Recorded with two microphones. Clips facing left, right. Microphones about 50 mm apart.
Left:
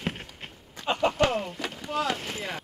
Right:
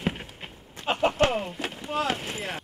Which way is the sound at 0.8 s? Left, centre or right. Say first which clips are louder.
Right 1 dB; centre.